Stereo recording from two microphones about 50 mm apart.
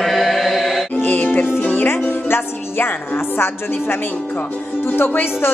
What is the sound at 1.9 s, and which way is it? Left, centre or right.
Music, left.